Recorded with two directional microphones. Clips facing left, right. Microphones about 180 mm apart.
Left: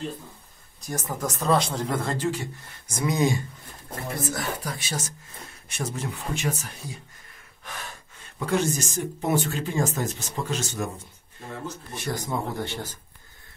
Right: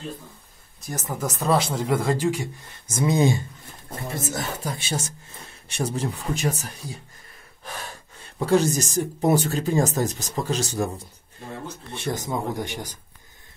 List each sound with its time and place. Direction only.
0.8 s speech: 5° right (ahead or behind)
2.9 s speech: 25° right (ahead or behind)
7.6 s gasp: 35° right (ahead or behind)
8.4 s speech: 35° right (ahead or behind)
11.9 s speech: 25° right (ahead or behind)